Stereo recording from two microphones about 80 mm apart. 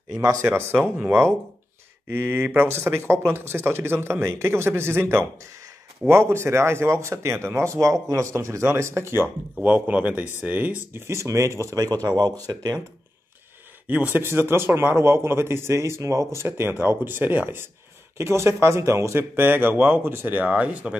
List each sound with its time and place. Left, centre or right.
0.1 s speech: right
2.0 s speech: right
11.7 s speech: right
13.8 s speech: right